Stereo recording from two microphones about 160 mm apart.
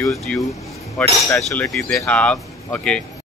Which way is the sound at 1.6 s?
5° left (ahead or behind).